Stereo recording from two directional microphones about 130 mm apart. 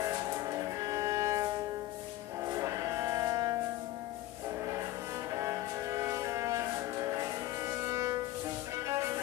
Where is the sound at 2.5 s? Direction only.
25° right (ahead or behind).